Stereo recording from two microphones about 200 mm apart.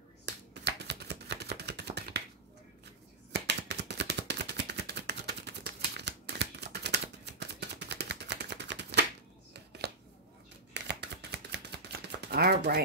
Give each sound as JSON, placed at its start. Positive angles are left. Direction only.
{"t": 0.2, "sound": "chopping", "side_deg": -60}
{"t": 3.3, "sound": "a sound", "side_deg": -60}
{"t": 9.5, "sound": "scissors", "side_deg": -55}
{"t": 10.7, "sound": "shuffling cards", "side_deg": -60}
{"t": 12.2, "sound": "chopping", "side_deg": -55}